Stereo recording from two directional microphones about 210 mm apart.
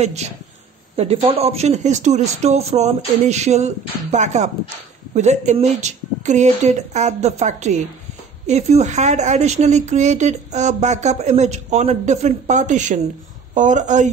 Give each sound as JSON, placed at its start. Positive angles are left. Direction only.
{"t": 0.0, "sound": "a woman's voice", "side_deg": -30}